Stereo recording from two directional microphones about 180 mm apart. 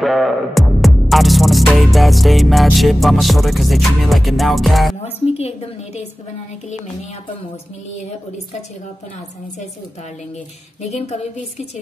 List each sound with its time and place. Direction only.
0.0 s music: centre (ahead or behind)
5.2 s a woman's voice: 35° left (ahead or behind)
10.8 s a woman's voice: 35° left (ahead or behind)